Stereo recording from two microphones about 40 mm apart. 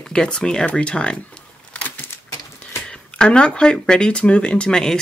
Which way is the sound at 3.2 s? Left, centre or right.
Left.